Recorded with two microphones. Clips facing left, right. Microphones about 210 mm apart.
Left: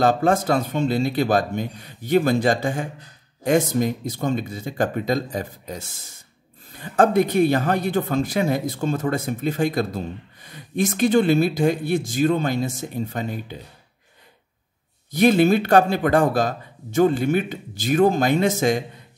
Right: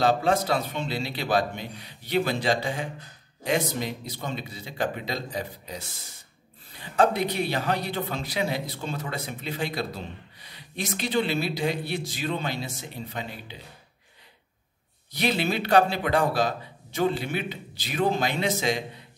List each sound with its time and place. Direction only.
0.0 s speech: 50° left (ahead or behind)
15.0 s speech: 50° left (ahead or behind)